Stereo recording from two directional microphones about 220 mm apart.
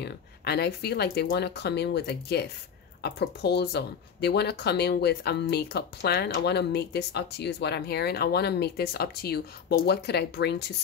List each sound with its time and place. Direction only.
0.0 s speech: 50° left (ahead or behind)